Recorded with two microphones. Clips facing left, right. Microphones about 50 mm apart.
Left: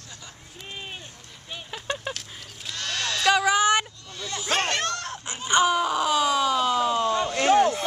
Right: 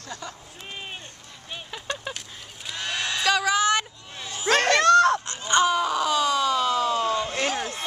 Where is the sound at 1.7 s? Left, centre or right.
Centre.